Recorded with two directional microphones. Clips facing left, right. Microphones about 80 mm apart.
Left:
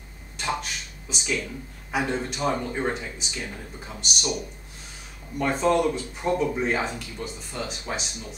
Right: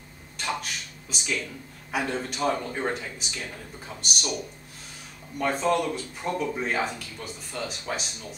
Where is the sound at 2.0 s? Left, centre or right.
Centre.